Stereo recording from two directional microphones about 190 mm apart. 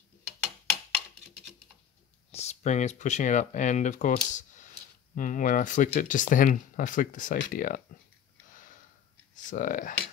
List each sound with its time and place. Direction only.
2.3 s speech: 35° left (ahead or behind)
9.5 s speech: 45° left (ahead or behind)